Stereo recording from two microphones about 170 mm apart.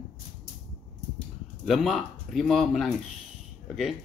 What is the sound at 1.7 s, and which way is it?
Speech, centre (ahead or behind).